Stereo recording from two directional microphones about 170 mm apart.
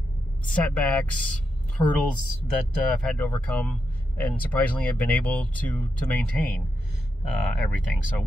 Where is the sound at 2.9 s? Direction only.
5° left (ahead or behind).